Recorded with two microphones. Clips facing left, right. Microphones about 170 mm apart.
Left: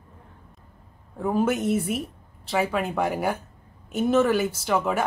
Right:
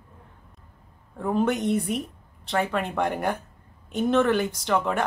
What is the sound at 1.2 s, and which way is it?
Speech, 5° left (ahead or behind).